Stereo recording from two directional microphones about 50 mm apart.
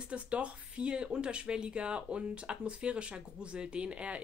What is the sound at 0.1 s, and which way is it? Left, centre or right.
Speech, right.